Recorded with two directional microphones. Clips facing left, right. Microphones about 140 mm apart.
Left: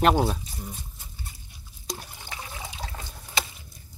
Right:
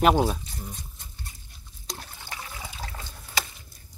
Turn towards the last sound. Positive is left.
turn(degrees=20)  # may be behind; listen again after turning